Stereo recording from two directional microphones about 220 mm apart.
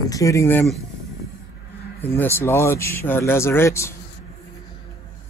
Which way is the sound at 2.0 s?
10° left (ahead or behind).